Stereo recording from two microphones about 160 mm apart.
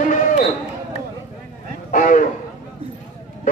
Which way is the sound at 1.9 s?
55° left (ahead or behind).